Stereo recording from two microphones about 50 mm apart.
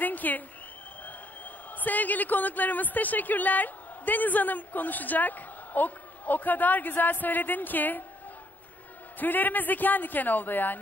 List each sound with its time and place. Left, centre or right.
0.0 s a sound: left
1.8 s speech: left
9.2 s speech: left